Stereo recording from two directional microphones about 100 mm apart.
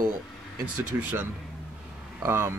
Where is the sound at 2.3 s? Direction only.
25° right (ahead or behind).